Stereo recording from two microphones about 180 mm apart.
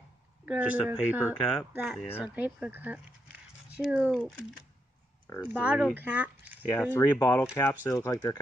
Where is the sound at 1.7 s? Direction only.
10° right (ahead or behind).